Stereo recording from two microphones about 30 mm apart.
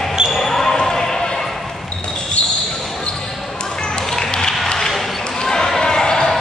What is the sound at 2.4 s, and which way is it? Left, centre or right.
Basketball bounce, left.